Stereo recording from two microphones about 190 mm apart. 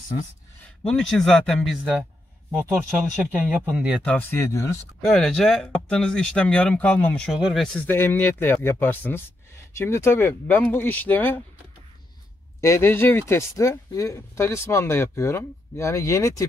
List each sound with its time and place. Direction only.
0.8 s speech: 5° left (ahead or behind)
3.3 s speech: 5° right (ahead or behind)
4.0 s speech: 10° left (ahead or behind)
12.5 s speech: 15° left (ahead or behind)